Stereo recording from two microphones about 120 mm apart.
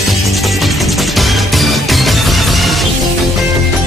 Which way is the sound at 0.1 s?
Centre (ahead or behind).